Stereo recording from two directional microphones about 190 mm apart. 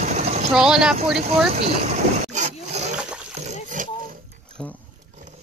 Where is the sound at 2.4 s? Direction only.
35° right (ahead or behind).